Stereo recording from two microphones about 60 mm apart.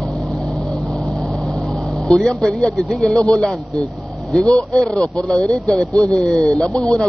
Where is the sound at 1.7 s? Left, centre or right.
Centre.